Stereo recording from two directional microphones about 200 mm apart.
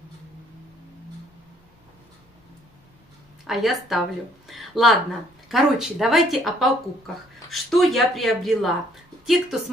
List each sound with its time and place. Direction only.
3.4 s speech: centre (ahead or behind)